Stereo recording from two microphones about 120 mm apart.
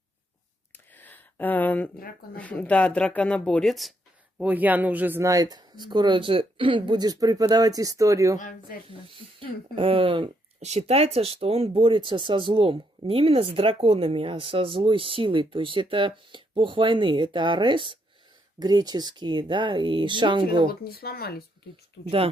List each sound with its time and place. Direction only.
0.7 s a sound: 15° left (ahead or behind)
2.3 s speech: 10° left (ahead or behind)
4.4 s speech: 15° right (ahead or behind)
5.2 s speech: 30° right (ahead or behind)
9.1 s speech: 50° right (ahead or behind)
10.6 s speech: 65° right (ahead or behind); by 20.7 s 40° right (ahead or behind)